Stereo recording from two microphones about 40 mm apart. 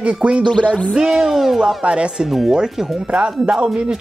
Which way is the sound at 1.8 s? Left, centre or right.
Right.